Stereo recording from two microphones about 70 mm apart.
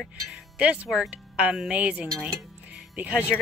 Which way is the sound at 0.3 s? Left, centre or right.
Centre.